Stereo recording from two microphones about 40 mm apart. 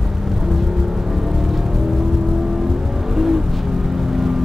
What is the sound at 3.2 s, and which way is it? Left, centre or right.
Music, centre.